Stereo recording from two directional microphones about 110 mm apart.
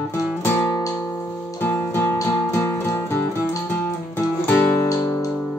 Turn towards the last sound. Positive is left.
turn(degrees=30)  # may be behind; listen again after turning